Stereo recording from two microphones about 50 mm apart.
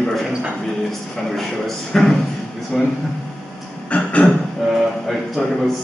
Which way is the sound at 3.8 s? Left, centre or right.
Left.